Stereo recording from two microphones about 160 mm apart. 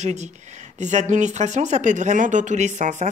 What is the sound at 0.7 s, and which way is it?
Speech, 50° right (ahead or behind).